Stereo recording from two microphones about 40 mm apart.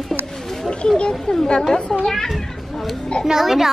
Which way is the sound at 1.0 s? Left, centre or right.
Centre.